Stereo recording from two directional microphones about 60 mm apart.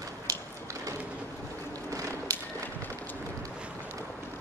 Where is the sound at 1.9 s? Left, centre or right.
Right.